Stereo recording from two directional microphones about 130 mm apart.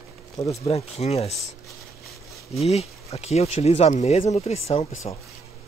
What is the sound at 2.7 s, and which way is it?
Speech, 50° left (ahead or behind).